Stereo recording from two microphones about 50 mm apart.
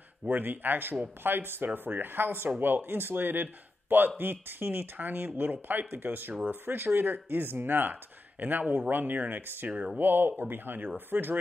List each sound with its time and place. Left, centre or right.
0.3 s speech: right